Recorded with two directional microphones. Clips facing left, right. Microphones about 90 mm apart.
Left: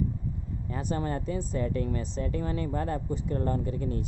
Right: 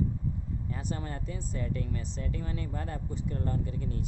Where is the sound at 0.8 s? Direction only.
50° left (ahead or behind).